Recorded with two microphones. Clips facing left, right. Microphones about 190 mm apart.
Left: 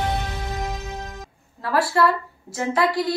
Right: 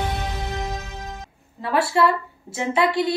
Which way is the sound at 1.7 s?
25° right (ahead or behind).